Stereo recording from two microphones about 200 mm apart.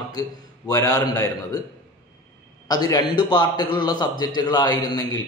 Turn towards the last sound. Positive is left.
turn(degrees=20)  # may be behind; listen again after turning